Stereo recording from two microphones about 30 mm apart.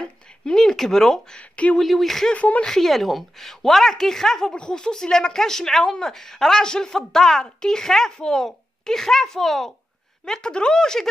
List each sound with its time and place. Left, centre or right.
0.0 s a sound: left
0.7 s a woman's voice: centre
2.3 s a woman's voice: left
2.8 s a woman's voice: centre
4.5 s a woman's voice: left; by 9.7 s centre
10.2 s a woman's voice: left